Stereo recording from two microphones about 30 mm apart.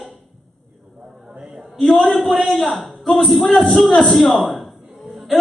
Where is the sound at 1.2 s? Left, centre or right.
Centre.